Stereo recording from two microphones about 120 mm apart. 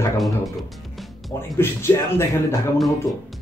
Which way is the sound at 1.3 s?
20° left (ahead or behind).